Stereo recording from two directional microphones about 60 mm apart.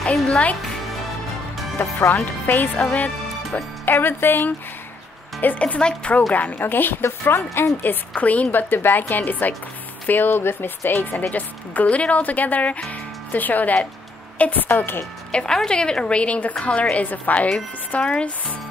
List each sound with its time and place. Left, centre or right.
1.8 s a woman's voice: left
2.8 s speech: centre
3.5 s a woman's voice: left
5.4 s speech: left
6.3 s a woman's voice: left
7.8 s a woman's voice: left
15.3 s a woman's voice: centre